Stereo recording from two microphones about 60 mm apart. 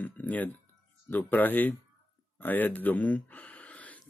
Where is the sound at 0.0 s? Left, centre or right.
Left.